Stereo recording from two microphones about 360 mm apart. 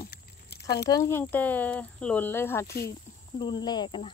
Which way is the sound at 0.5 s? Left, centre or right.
Left.